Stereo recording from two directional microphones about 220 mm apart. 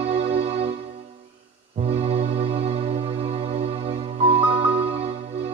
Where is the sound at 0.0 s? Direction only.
25° right (ahead or behind).